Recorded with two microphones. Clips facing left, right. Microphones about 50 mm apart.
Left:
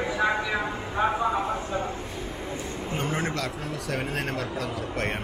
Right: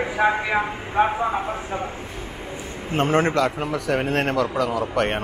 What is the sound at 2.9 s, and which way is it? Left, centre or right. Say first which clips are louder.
A man's voice: right 11 dB; right.